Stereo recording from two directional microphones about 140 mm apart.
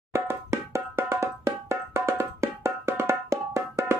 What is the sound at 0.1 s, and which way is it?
Music, 20° right (ahead or behind).